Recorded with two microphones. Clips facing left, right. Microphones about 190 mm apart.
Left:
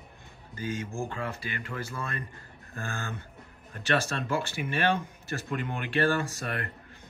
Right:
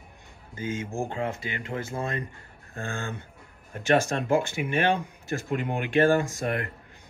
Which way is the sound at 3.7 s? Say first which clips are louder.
Right 5 dB; 15° right (ahead or behind).